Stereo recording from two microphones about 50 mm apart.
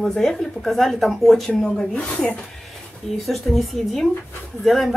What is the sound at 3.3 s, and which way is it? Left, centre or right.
A woman's voice, centre.